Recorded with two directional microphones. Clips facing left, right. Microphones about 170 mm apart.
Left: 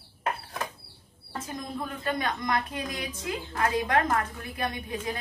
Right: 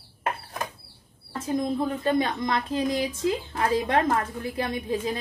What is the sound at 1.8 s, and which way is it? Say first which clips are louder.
A woman's voice: right 7 dB; 25° right (ahead or behind).